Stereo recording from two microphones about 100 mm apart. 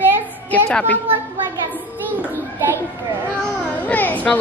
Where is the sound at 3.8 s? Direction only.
15° left (ahead or behind).